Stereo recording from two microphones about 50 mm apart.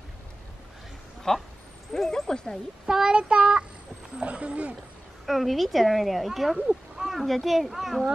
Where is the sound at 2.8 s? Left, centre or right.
Centre.